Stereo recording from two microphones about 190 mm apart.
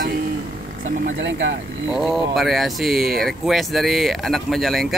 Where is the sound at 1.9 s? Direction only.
Centre (ahead or behind).